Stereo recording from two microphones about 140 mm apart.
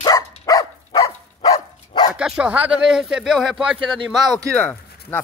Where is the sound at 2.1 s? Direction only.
5° right (ahead or behind).